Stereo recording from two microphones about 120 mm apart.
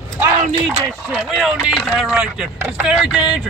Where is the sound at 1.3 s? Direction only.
Centre (ahead or behind).